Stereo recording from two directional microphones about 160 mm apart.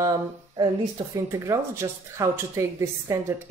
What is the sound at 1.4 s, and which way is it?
A woman's voice, 20° right (ahead or behind).